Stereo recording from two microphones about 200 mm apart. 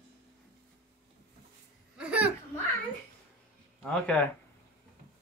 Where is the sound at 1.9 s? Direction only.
5° right (ahead or behind).